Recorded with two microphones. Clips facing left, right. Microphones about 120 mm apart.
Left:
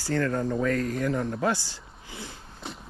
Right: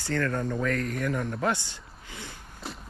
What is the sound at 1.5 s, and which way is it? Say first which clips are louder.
Speech: left 2 dB; 20° right (ahead or behind).